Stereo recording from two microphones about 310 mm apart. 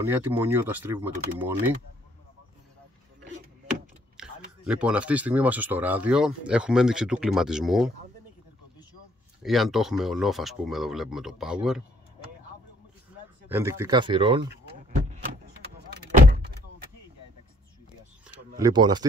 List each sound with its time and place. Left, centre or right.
0.0 s speech: centre
4.2 s speech: centre
9.4 s speech: centre
13.5 s speech: centre
14.5 s power windows: right
15.9 s vehicle: right
18.6 s speech: centre